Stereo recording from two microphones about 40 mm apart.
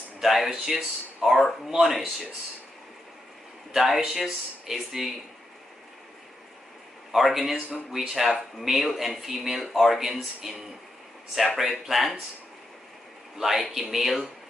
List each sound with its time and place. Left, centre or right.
0.2 s speech: centre
3.7 s speech: centre
7.2 s speech: centre
13.4 s speech: centre